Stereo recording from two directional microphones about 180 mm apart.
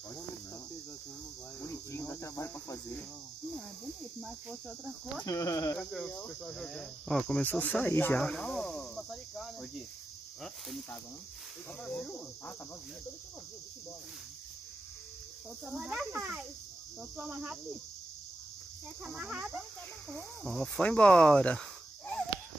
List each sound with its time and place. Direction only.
1.6 s cricket: 15° left (ahead or behind)
4.2 s speech: centre (ahead or behind)
5.2 s speech: 20° left (ahead or behind)
5.8 s speech: 5° left (ahead or behind)
15.7 s a child's voice: 5° right (ahead or behind)
19.0 s a child's voice: 10° right (ahead or behind)
20.4 s speech: 5° left (ahead or behind)